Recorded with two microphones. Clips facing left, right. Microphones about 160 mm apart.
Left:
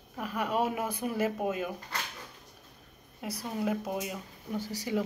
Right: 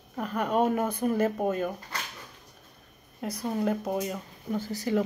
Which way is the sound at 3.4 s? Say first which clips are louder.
Right 4 dB; 40° right (ahead or behind).